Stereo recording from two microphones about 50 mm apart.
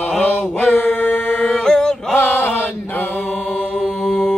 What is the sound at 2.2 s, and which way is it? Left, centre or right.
Chant, left.